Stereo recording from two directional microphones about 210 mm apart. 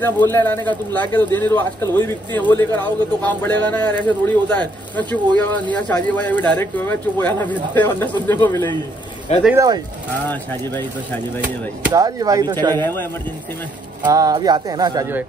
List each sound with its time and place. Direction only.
0.0 s speech: 10° left (ahead or behind)
9.3 s speech: 30° left (ahead or behind)
10.2 s speech: 10° left (ahead or behind)
11.9 s speech: 15° right (ahead or behind)
12.7 s speech: 10° left (ahead or behind)
14.0 s speech: 20° right (ahead or behind)